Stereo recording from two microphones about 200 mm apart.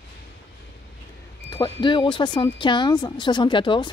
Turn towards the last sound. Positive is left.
turn(degrees=25)  # may be behind; listen again after turning